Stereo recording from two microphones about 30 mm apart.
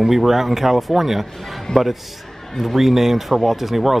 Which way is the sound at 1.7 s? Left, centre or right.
Left.